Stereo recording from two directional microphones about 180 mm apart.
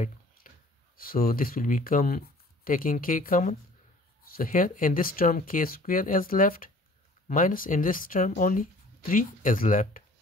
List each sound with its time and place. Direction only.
0.9 s speech: 55° left (ahead or behind)